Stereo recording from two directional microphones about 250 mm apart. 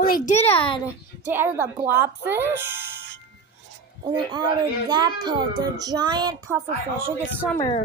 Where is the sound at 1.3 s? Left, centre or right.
Centre.